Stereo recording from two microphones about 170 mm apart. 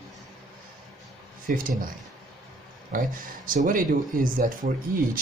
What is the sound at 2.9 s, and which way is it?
Speech, 55° right (ahead or behind).